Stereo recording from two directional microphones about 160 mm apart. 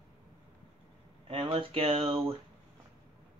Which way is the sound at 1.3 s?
35° right (ahead or behind).